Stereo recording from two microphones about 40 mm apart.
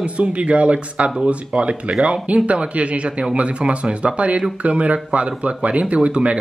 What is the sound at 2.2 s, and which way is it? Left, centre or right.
Speech, right.